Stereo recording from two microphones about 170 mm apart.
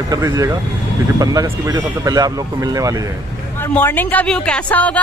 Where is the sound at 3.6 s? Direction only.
10° left (ahead or behind).